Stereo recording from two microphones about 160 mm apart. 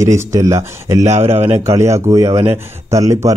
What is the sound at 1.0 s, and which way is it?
Speech, 40° right (ahead or behind).